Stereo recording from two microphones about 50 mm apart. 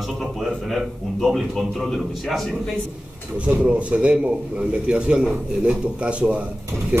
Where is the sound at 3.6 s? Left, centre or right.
Right.